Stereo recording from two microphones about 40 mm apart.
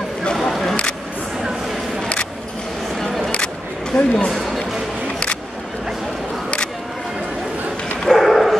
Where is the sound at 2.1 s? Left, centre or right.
Left.